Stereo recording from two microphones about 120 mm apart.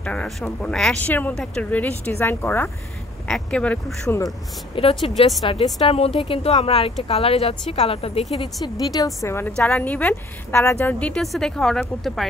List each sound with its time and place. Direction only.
0.0 s speech: 10° left (ahead or behind)
3.3 s speech: 5° left (ahead or behind)
4.7 s speech: 50° left (ahead or behind)
8.6 s a woman's voice: 30° left (ahead or behind)
9.6 s a woman's voice: 10° left (ahead or behind)